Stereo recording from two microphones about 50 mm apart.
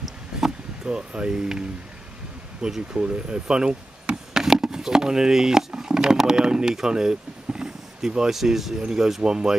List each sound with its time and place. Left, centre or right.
0.8 s speech: centre
2.6 s speech: centre
5.8 s a sound: centre
8.8 s speech: centre